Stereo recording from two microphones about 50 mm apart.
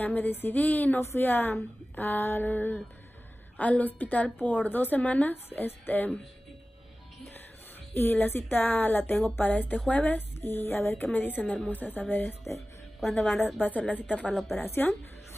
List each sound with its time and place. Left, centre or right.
0.0 s speech: left
0.9 s a woman's voice: left
5.3 s speech: left
7.9 s speech: left
10.4 s a woman's voice: left
12.5 s a woman's voice: centre
13.6 s speech: left
14.5 s speech: left